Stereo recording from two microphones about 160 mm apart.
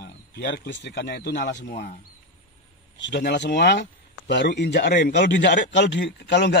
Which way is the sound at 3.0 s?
90° left.